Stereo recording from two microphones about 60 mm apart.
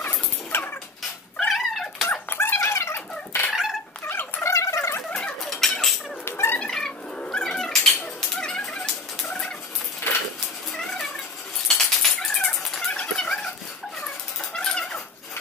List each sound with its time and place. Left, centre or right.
0.0 s dog: left
1.5 s dog: centre
2.0 s dog: left
4.1 s a sound: left
4.5 s a sound: left
5.4 s music: centre
6.2 s a sound: left
6.6 s cat: centre
7.4 s dog: centre
8.4 s music: centre
11.6 s cat: centre
12.9 s a sound: centre